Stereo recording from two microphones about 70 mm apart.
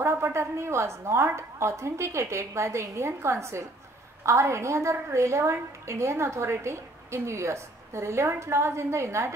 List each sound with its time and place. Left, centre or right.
0.0 s a woman's voice: right